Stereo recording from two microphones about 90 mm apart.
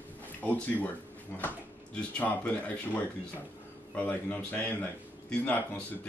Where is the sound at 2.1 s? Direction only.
15° left (ahead or behind).